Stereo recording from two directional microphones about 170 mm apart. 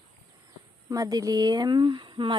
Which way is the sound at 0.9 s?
20° right (ahead or behind).